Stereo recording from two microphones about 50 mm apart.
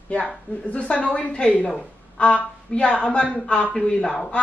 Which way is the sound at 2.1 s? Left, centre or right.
Left.